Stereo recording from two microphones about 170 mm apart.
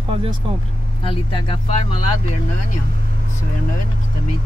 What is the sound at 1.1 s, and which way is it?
Speech, 30° left (ahead or behind).